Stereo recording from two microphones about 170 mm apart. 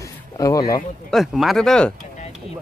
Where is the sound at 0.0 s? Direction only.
20° left (ahead or behind).